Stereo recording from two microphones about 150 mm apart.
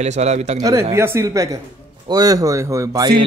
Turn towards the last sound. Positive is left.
turn(degrees=-25)  # may be behind; listen again after turning